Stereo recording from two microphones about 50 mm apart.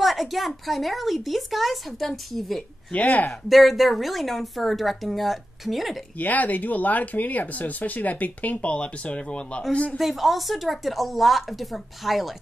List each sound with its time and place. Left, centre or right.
0.0 s speech: centre
2.9 s speech: left
3.4 s speech: centre
6.1 s speech: left
9.9 s speech: centre